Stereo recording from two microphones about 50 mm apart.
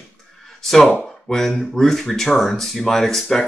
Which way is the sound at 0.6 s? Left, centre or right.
Centre.